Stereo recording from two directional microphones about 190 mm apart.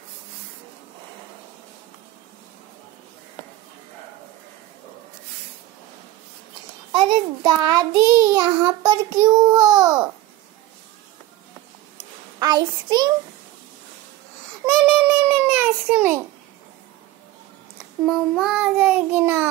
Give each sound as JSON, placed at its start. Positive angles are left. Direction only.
{"t": 6.9, "sound": "a child's voice", "side_deg": -25}
{"t": 12.4, "sound": "a child's voice", "side_deg": -20}
{"t": 14.7, "sound": "child singing", "side_deg": -5}
{"t": 18.0, "sound": "child singing", "side_deg": 0}